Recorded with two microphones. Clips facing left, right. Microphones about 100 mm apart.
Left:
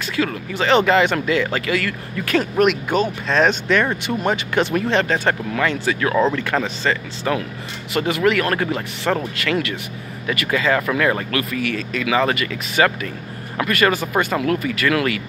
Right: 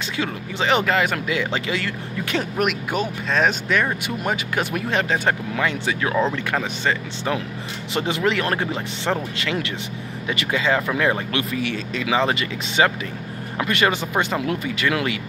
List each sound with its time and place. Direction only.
0.1 s speech: 20° right (ahead or behind)
0.8 s speech: centre (ahead or behind)
1.2 s speech: 15° right (ahead or behind)